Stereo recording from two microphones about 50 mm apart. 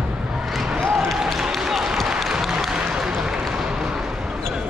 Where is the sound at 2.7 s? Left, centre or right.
Centre.